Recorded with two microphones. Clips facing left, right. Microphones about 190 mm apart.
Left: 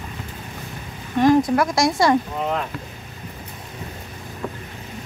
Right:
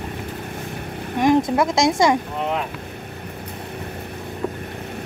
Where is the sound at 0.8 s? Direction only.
60° right (ahead or behind).